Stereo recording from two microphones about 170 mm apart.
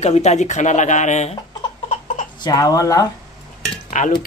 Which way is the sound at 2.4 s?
20° left (ahead or behind).